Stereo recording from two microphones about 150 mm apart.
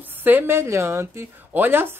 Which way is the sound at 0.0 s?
15° right (ahead or behind).